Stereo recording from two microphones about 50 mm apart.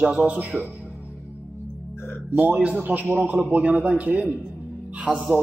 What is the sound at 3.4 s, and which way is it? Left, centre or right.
Speech, right.